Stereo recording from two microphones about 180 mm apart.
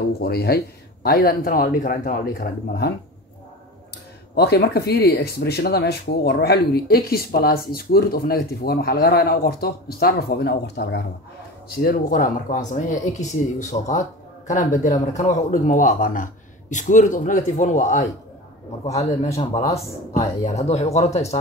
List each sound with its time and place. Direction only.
0.2 s speech: 60° left (ahead or behind)
4.4 s speech: 65° left (ahead or behind)
11.8 s speech: 55° left (ahead or behind)
19.7 s speech: 40° left (ahead or behind)